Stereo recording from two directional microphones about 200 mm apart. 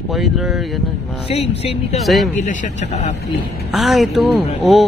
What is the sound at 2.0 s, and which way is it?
Speech, centre (ahead or behind).